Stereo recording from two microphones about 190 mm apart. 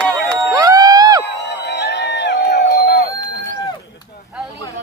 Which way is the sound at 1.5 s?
65° left (ahead or behind).